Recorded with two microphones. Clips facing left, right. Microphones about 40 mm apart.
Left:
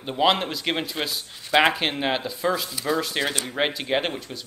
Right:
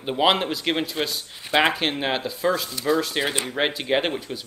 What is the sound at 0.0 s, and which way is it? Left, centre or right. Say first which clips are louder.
Speech: right 1 dB; centre.